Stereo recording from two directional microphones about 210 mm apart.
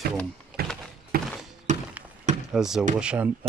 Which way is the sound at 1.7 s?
35° right (ahead or behind).